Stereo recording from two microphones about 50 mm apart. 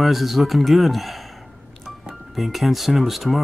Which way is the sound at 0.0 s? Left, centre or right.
Centre.